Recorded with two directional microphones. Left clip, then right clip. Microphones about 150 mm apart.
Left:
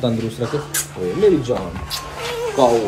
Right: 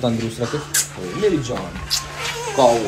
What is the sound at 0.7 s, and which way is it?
Music, 25° left (ahead or behind).